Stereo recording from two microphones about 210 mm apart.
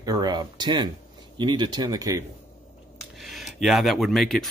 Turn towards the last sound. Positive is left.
turn(degrees=0)  # may be behind; listen again after turning